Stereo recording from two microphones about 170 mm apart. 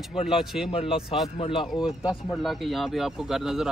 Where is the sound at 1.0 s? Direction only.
5° right (ahead or behind).